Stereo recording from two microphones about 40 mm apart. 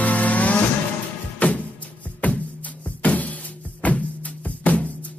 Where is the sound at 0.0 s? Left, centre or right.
Left.